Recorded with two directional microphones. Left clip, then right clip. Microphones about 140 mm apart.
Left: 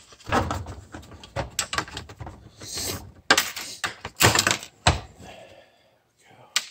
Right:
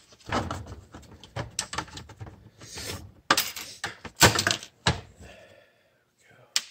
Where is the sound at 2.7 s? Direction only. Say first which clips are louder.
Left 6 dB; 25° left (ahead or behind).